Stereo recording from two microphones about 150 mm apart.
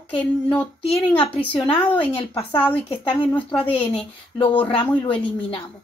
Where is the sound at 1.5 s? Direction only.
35° left (ahead or behind).